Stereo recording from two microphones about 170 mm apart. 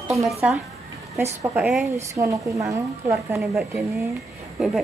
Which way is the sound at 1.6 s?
5° right (ahead or behind).